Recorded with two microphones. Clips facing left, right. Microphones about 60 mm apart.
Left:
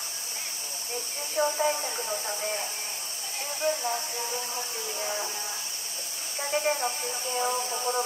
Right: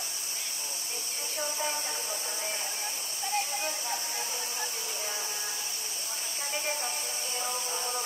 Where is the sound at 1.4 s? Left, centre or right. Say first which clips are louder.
Left 10 dB; left.